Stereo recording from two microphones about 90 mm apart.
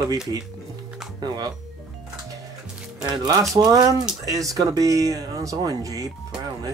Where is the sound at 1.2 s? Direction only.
50° right (ahead or behind).